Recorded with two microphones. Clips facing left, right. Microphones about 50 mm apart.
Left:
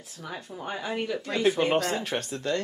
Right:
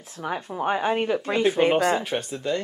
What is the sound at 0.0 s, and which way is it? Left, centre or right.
Speech, right.